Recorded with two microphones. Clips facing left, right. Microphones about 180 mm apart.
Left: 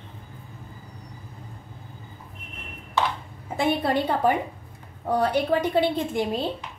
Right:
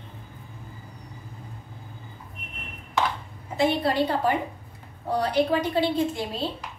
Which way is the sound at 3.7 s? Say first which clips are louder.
Left 1 dB; 50° left (ahead or behind).